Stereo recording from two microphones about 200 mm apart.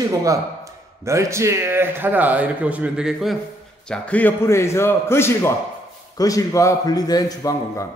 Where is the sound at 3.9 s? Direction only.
5° left (ahead or behind).